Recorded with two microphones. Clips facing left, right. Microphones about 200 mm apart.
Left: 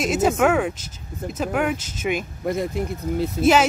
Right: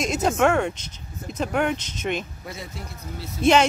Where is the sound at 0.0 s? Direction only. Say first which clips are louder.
Left 2 dB; 5° left (ahead or behind).